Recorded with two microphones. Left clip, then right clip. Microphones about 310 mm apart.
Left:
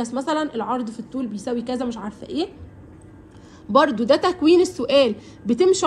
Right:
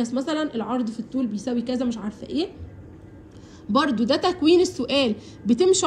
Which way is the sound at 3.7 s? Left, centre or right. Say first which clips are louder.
Left 5 dB; centre.